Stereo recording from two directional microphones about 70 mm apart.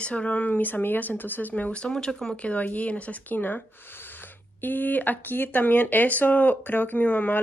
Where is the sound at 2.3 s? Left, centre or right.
Centre.